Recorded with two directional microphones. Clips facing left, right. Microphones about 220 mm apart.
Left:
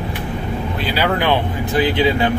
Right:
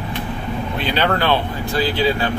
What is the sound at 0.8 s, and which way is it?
Speech, 10° left (ahead or behind).